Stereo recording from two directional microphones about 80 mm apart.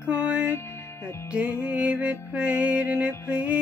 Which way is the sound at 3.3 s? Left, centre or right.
Centre.